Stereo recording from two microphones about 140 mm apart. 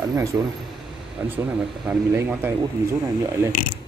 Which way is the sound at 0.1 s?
20° right (ahead or behind).